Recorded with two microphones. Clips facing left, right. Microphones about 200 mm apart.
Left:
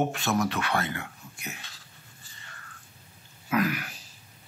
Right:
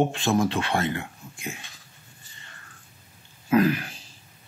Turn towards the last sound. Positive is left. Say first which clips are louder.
# right 6 dB
turn(degrees=-30)  # may be behind; listen again after turning